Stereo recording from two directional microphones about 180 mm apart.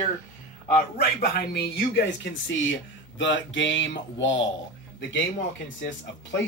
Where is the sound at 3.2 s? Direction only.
90° left.